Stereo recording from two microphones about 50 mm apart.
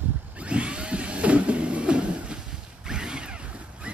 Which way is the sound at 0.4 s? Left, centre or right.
Right.